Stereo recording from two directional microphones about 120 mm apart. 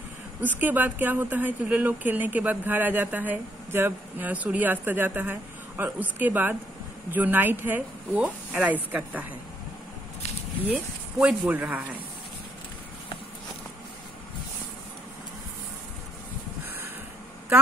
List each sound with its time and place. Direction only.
0.4 s speech: 15° right (ahead or behind)
10.7 s speech: 10° right (ahead or behind)